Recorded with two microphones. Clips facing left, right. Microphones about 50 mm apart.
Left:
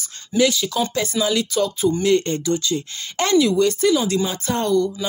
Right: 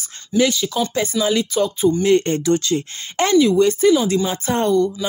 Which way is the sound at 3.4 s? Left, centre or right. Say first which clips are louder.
Right 3 dB; centre.